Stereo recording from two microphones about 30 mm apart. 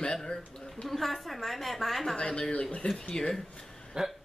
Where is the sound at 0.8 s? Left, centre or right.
Centre.